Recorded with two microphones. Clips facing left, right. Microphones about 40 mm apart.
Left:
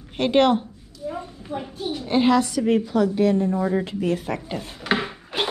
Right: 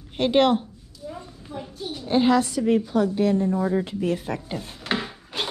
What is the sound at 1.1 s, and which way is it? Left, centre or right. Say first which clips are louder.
Speech: left 4 dB; left.